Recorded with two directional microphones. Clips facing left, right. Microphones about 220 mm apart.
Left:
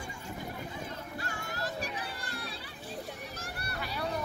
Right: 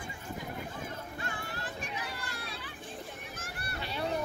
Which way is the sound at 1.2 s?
40° left (ahead or behind).